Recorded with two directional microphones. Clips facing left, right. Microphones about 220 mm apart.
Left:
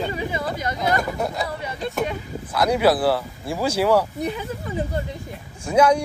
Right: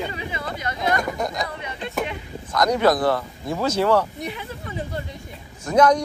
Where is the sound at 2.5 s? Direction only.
10° left (ahead or behind).